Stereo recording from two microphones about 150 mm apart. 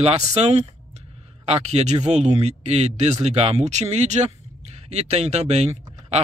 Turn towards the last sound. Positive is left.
turn(degrees=-45)  # may be behind; listen again after turning